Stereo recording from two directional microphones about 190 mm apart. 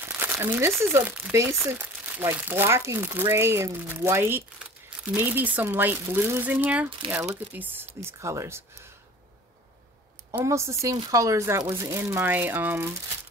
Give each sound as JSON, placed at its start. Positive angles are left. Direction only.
{"t": 0.0, "sound": "crumpling", "side_deg": -10}
{"t": 0.9, "sound": "speech", "side_deg": -10}
{"t": 10.3, "sound": "speech", "side_deg": -15}